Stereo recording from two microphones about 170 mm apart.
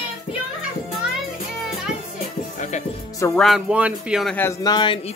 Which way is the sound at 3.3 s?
Centre (ahead or behind).